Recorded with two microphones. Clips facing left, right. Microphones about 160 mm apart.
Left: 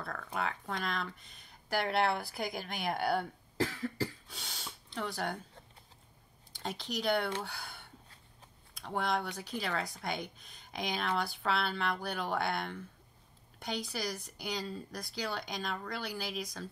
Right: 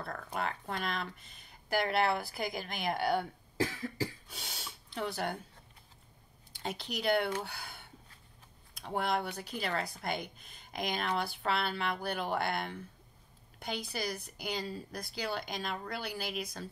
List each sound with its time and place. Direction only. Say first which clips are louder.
0.4 s speech: even; centre (ahead or behind)
6.6 s speech: even; 5° right (ahead or behind)
8.8 s speech: right 1 dB; 5° right (ahead or behind)